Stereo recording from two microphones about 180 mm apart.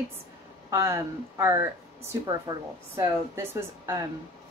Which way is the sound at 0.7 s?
15° right (ahead or behind).